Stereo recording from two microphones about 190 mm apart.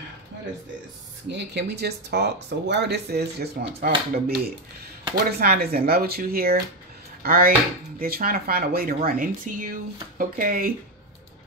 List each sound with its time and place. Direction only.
1.3 s speech: 65° right (ahead or behind)